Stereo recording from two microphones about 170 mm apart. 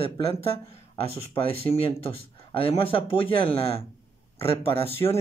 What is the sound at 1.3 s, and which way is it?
Speech, 30° left (ahead or behind).